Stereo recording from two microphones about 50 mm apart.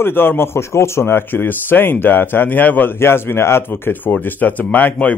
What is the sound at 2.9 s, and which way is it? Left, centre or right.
Speech, left.